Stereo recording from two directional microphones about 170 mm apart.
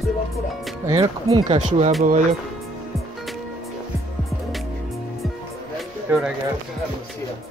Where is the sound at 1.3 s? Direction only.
35° right (ahead or behind).